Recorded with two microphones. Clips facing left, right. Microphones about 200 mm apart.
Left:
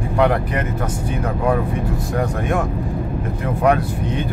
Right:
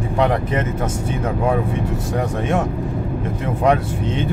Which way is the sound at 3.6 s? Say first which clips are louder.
Even; 25° right (ahead or behind).